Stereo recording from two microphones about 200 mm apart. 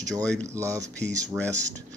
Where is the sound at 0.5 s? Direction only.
15° right (ahead or behind).